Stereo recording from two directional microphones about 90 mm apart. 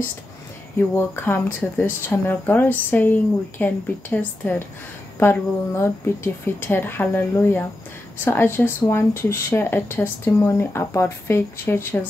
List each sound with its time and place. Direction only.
0.7 s speech: 25° left (ahead or behind)